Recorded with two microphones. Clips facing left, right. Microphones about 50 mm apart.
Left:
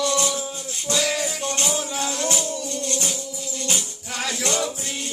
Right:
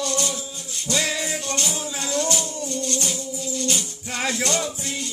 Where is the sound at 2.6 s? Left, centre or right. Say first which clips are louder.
Right 1 dB; right.